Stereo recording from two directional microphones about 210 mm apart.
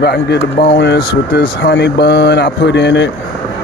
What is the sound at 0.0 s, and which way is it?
Speech, 50° left (ahead or behind).